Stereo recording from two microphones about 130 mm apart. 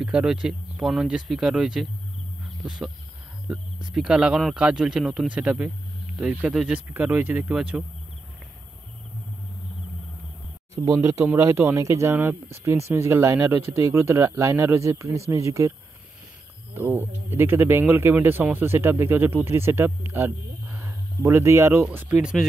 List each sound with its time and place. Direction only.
0.0 s a man's voice: 5° right (ahead or behind)
10.8 s speech: 25° right (ahead or behind)
16.7 s a man's voice: 15° right (ahead or behind)